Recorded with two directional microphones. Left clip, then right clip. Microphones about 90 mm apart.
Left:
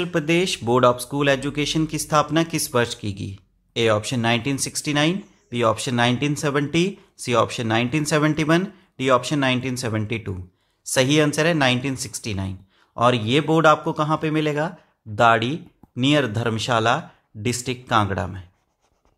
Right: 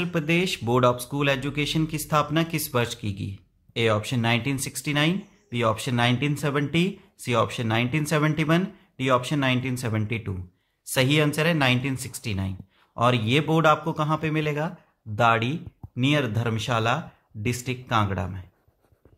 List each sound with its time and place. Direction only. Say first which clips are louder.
0.0 s speech: left 4 dB; 30° left (ahead or behind)